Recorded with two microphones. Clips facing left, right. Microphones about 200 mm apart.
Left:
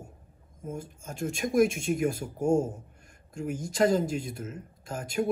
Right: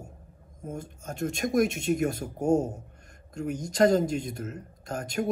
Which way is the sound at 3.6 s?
45° right (ahead or behind).